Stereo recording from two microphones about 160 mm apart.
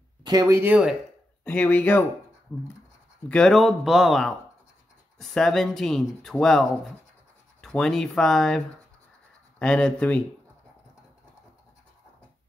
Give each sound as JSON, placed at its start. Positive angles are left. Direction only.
{"t": 0.2, "sound": "speech", "side_deg": -25}
{"t": 1.4, "sound": "speech", "side_deg": 10}
{"t": 3.3, "sound": "speech", "side_deg": 5}